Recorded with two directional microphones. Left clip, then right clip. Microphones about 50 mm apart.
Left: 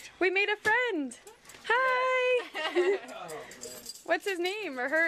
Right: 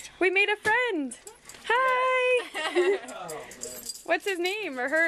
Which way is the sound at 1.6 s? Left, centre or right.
Centre.